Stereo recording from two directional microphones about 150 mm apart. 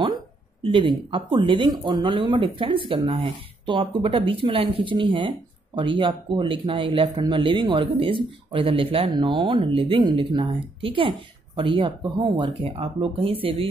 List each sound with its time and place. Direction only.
0.0 s speech: 35° right (ahead or behind)